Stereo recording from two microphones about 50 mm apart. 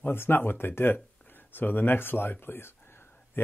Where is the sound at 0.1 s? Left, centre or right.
Left.